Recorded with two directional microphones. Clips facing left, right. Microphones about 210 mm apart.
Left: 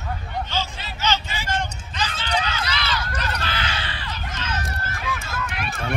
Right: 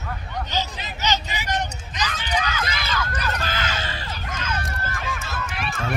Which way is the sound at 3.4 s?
45° right (ahead or behind).